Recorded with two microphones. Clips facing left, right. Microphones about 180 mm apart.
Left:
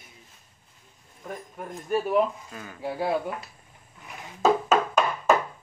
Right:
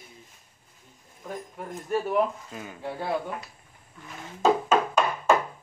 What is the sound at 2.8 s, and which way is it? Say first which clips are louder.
Speech: left 3 dB; 10° left (ahead or behind).